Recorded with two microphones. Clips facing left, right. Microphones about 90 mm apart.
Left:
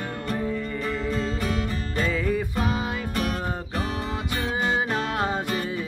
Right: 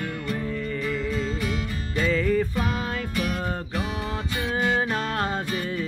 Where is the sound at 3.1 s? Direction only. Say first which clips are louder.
Even; 40° left (ahead or behind).